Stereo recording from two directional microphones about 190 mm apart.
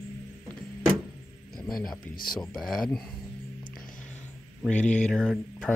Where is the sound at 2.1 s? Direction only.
50° left (ahead or behind).